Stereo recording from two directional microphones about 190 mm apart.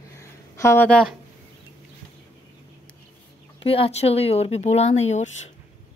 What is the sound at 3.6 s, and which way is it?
Speech, 30° left (ahead or behind).